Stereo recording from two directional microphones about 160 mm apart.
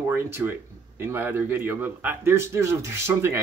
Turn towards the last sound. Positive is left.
turn(degrees=-15)  # may be behind; listen again after turning